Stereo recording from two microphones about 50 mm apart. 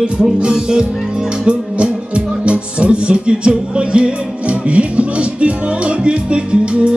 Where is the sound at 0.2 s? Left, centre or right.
Centre.